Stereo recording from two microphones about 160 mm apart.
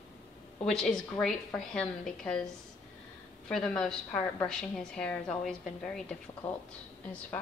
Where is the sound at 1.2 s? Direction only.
5° left (ahead or behind).